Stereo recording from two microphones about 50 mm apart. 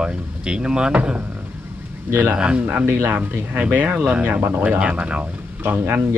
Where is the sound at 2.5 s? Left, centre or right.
Right.